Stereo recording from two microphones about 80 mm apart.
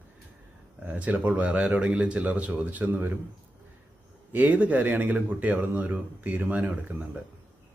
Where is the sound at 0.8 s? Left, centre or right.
Centre.